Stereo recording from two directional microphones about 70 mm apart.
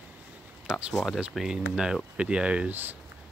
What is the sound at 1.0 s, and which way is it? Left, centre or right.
Speech, centre.